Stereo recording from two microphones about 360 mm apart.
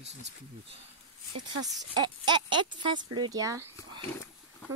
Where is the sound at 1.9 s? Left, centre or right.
Centre.